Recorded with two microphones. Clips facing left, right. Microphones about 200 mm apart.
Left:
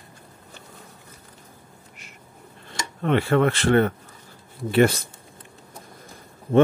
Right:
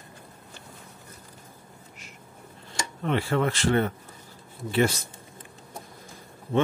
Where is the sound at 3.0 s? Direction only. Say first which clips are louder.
Left 6 dB; 60° left (ahead or behind).